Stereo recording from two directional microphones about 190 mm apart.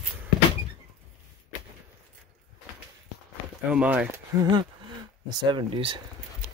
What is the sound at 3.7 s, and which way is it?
Speech, 5° right (ahead or behind).